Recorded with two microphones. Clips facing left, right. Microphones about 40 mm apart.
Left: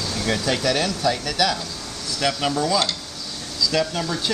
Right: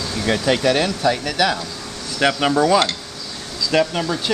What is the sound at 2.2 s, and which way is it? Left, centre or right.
Speech, right.